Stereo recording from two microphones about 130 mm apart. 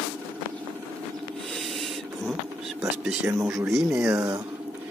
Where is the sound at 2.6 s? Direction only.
5° right (ahead or behind).